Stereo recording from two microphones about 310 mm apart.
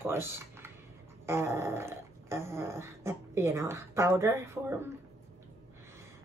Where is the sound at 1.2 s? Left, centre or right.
Centre.